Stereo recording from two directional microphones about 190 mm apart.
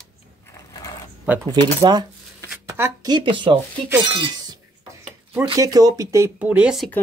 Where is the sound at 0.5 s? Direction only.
15° left (ahead or behind).